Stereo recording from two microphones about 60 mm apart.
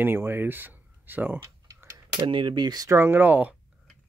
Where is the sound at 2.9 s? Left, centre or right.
Right.